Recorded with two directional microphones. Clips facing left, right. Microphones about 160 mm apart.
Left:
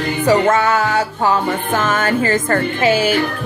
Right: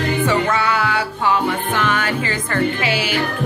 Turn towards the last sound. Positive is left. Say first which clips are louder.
# left 5 dB
turn(degrees=45)  # may be behind; listen again after turning